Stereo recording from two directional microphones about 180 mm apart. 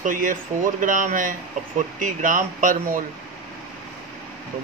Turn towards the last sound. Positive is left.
turn(degrees=-50)  # may be behind; listen again after turning